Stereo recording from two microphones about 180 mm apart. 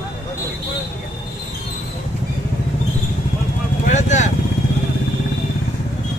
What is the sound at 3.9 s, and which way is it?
Speech, 40° left (ahead or behind).